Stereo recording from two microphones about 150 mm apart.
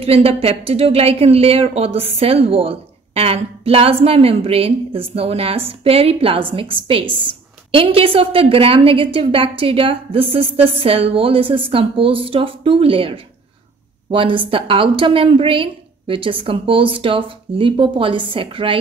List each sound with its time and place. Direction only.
0.0 s speech: 40° right (ahead or behind)